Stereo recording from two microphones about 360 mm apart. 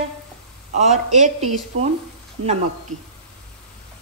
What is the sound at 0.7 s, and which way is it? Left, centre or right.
Speech, centre.